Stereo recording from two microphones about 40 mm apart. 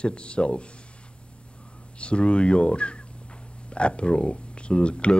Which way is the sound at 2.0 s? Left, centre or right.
Left.